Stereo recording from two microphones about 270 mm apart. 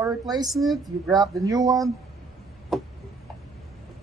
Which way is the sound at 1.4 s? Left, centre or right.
Centre.